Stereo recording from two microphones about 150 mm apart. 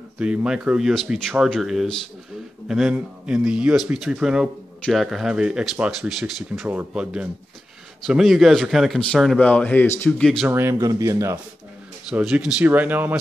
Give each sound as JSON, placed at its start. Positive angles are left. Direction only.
{"t": 0.2, "sound": "speech", "side_deg": -5}
{"t": 10.5, "sound": "speech", "side_deg": -15}
{"t": 12.1, "sound": "speech", "side_deg": -5}